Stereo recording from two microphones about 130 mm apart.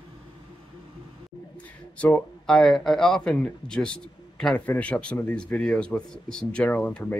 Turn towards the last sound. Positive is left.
turn(degrees=10)  # may be behind; listen again after turning